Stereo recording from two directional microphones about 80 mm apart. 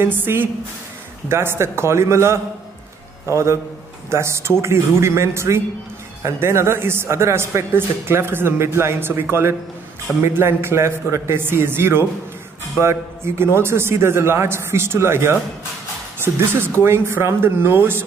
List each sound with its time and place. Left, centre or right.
0.0 s a man's voice: right